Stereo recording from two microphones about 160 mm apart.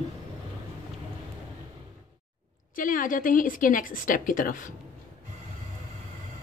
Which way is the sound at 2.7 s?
60° left (ahead or behind).